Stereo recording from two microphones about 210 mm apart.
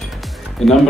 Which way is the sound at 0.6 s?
Centre (ahead or behind).